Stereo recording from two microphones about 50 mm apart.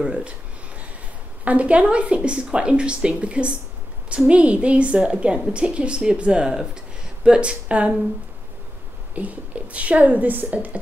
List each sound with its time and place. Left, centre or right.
0.0 s speech: centre
1.4 s a woman's voice: right
9.1 s a woman's voice: right